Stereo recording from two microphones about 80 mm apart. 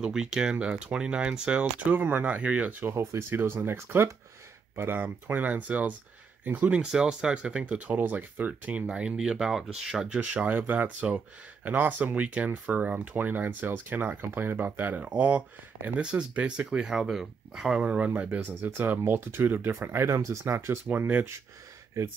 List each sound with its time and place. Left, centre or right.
0.0 s speech: centre
10.3 s speech: right
17.8 s speech: centre
22.0 s speech: right